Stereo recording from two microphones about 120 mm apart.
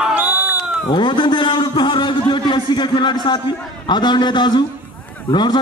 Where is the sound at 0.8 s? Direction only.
40° left (ahead or behind).